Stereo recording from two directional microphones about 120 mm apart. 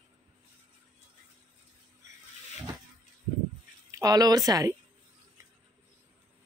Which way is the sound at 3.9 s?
30° right (ahead or behind).